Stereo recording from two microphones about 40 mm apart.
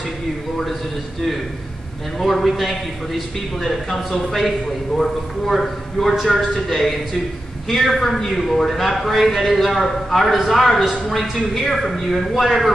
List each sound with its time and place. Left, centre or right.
2.1 s a man's voice: centre